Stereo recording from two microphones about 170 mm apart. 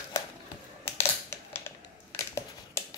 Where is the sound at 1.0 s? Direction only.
15° left (ahead or behind).